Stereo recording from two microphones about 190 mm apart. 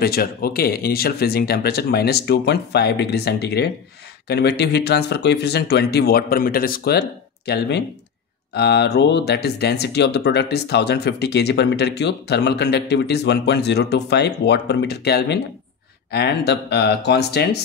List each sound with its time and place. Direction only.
0.0 s speech: 55° left (ahead or behind)